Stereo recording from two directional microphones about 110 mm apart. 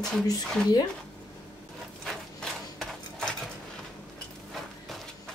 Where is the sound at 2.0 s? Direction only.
5° left (ahead or behind).